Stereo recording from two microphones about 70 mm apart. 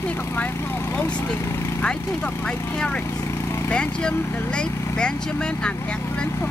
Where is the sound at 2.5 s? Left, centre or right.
Centre.